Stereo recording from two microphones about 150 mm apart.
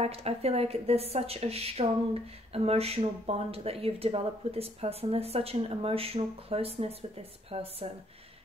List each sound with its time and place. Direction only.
0.0 s a woman's voice: 45° right (ahead or behind)